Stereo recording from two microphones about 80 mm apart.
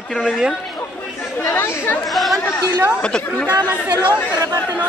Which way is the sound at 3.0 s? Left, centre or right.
Centre.